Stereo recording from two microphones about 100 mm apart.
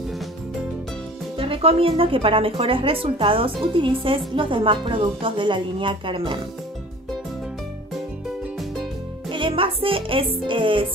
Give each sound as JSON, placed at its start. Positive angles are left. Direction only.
{"t": 1.4, "sound": "speech", "side_deg": -75}
{"t": 9.3, "sound": "music", "side_deg": -60}